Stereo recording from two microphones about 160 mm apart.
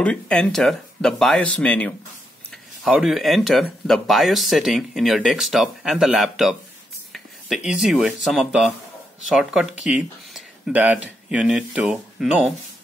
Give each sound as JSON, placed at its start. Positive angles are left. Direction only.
{"t": 0.0, "sound": "speech", "side_deg": 5}